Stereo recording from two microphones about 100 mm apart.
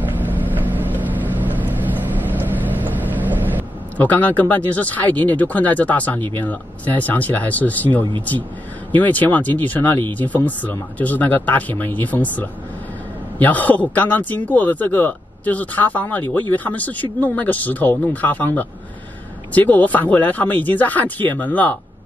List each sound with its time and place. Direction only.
0.0 s vehicle: 20° right (ahead or behind)
3.9 s a man's voice: 15° left (ahead or behind)